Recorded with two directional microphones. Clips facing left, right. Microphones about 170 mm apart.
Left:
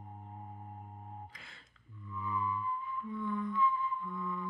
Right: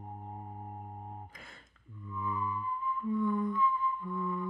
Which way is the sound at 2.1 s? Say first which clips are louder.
Right 1 dB; 45° right (ahead or behind).